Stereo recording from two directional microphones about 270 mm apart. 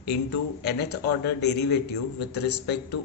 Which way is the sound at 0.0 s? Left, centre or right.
Left.